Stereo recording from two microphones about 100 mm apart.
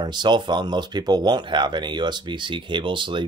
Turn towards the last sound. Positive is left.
turn(degrees=-55)  # may be behind; listen again after turning